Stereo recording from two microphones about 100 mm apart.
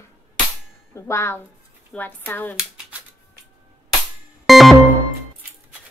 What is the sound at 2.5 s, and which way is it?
Hands, 5° right (ahead or behind).